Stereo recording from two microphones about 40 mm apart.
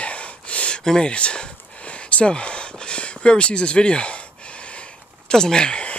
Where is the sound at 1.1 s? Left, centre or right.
Left.